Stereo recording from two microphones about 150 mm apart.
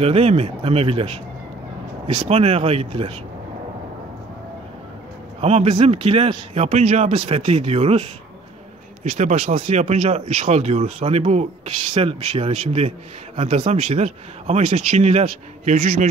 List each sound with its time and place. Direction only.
0.0 s speech: 40° right (ahead or behind)
2.2 s speech: 40° right (ahead or behind)
5.4 s speech: 45° right (ahead or behind)